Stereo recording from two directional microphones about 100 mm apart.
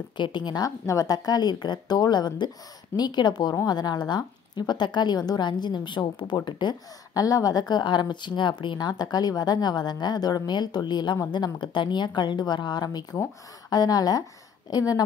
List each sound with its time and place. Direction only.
0.2 s a woman's voice: 50° left (ahead or behind)